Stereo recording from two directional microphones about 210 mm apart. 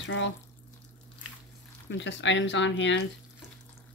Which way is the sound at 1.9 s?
60° left (ahead or behind).